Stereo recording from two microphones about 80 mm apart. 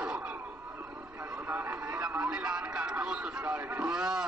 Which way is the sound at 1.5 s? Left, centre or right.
Centre.